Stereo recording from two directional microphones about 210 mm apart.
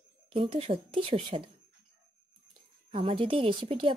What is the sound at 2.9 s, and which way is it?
Speech, 25° right (ahead or behind).